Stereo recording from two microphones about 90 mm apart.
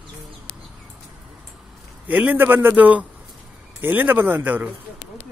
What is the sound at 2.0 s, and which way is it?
A man's voice, 20° right (ahead or behind).